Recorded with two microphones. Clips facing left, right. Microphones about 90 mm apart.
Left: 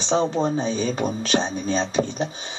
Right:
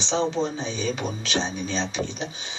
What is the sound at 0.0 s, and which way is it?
A man's voice, 40° left (ahead or behind).